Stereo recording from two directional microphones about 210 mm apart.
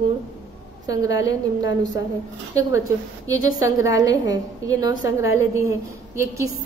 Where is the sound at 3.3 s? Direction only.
70° left (ahead or behind).